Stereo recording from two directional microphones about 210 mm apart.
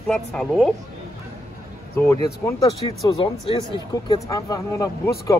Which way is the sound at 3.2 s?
25° left (ahead or behind).